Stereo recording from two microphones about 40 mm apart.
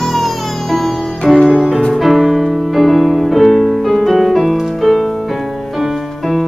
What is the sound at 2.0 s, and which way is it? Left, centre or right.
Music, centre.